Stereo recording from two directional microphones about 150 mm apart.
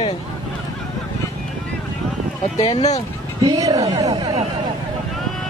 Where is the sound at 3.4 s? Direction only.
25° right (ahead or behind).